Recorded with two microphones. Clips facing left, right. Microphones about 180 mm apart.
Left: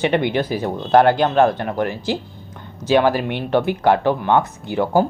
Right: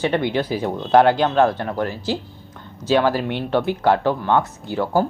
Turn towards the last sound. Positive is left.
turn(degrees=15)  # may be behind; listen again after turning